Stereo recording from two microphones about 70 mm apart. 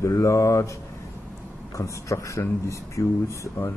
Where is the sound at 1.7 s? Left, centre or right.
Left.